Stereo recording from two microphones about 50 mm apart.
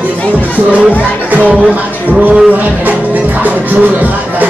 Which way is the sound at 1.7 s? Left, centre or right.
Right.